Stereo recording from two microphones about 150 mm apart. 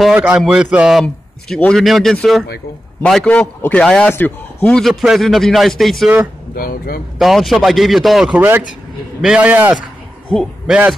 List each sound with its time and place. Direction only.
0.0 s a man's voice: 5° right (ahead or behind)
1.0 s a man's voice: 5° left (ahead or behind)
6.5 s speech: 80° left
7.2 s a man's voice: centre (ahead or behind)
10.3 s a man's voice: 5° left (ahead or behind)